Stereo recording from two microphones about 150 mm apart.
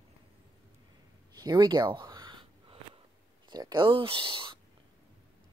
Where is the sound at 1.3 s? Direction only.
30° right (ahead or behind).